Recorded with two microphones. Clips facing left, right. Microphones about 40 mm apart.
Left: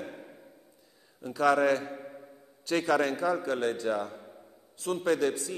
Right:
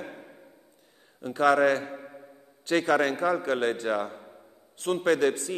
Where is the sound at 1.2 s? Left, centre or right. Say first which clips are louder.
Right 3 dB; right.